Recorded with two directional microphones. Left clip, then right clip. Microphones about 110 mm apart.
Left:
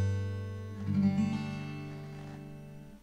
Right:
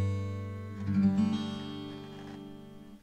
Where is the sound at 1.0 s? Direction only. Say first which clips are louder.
Right 2 dB; 45° right (ahead or behind).